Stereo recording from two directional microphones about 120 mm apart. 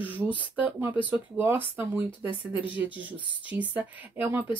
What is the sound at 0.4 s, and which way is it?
Speech, 15° right (ahead or behind).